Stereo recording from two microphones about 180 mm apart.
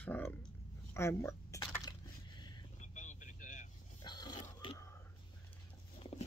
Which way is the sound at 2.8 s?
45° left (ahead or behind).